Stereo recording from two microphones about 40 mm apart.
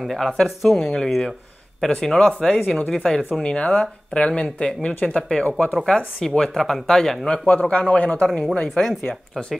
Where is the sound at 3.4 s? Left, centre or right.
Left.